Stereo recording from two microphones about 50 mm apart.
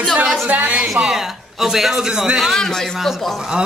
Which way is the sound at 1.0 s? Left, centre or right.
Centre.